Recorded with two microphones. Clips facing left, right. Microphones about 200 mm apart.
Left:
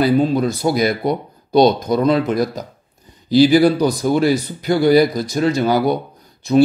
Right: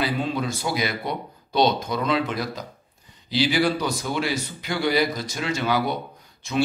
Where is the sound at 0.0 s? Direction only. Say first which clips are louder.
Left 10 dB; 40° left (ahead or behind).